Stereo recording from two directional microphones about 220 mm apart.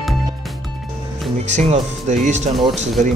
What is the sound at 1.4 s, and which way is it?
A man's voice, 30° right (ahead or behind).